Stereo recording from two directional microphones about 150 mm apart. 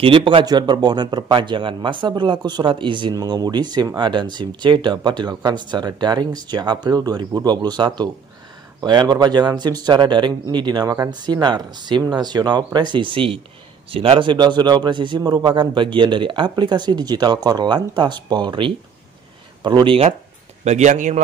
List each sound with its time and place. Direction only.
0.0 s a man's voice: 35° right (ahead or behind)
20.6 s a man's voice: 50° right (ahead or behind)